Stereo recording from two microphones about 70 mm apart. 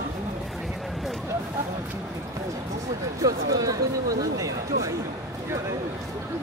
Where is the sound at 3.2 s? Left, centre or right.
Right.